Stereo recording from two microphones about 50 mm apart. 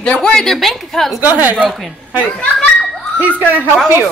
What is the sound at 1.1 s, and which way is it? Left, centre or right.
Speech, right.